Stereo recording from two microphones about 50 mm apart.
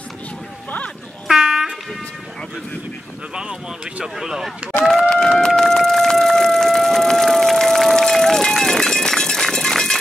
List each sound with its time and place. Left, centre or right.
1.3 s dog: centre
4.0 s speech: centre
4.8 s a sound: centre